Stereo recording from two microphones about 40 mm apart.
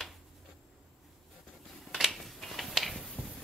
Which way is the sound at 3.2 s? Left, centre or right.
Centre.